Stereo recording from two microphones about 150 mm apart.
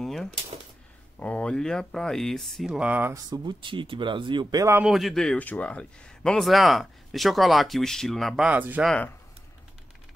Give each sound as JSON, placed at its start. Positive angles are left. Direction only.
{"t": 0.0, "sound": "a sound", "side_deg": 5}
{"t": 1.2, "sound": "speech", "side_deg": 5}
{"t": 3.3, "sound": "speech", "side_deg": -30}
{"t": 4.7, "sound": "speech", "side_deg": -5}
{"t": 8.8, "sound": "speech", "side_deg": 5}